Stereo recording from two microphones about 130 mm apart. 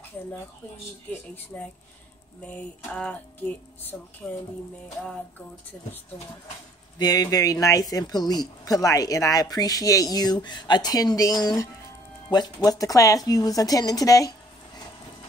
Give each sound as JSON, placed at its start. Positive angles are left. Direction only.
{"t": 1.5, "sound": "a sound", "side_deg": 10}
{"t": 4.2, "sound": "music", "side_deg": 5}
{"t": 7.0, "sound": "speech", "side_deg": 30}